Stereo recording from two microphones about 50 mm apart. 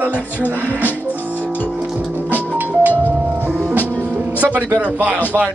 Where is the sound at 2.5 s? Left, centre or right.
Right.